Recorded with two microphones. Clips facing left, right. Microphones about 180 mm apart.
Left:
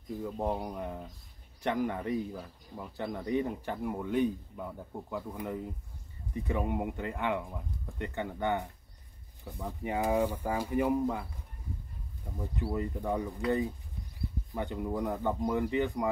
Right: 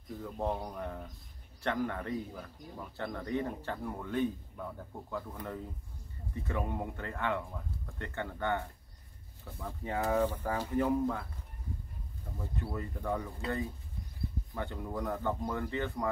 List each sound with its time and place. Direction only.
0.2 s speech: 15° left (ahead or behind)
12.2 s speech: 15° left (ahead or behind)
13.4 s speech: 25° right (ahead or behind)
14.5 s speech: 15° left (ahead or behind)